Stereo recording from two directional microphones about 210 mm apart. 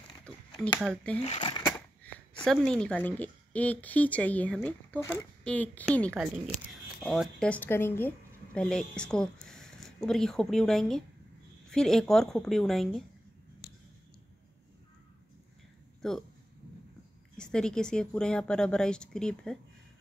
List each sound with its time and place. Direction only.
0.6 s speech: centre (ahead or behind)
1.2 s speech: 25° left (ahead or behind)
2.4 s speech: 5° left (ahead or behind)
16.0 s speech: centre (ahead or behind)
17.4 s speech: 5° left (ahead or behind)